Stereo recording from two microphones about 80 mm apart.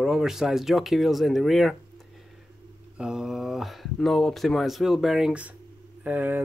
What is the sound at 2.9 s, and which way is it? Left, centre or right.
Speech, centre.